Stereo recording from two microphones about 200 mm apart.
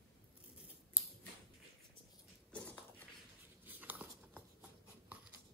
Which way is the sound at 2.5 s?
5° left (ahead or behind).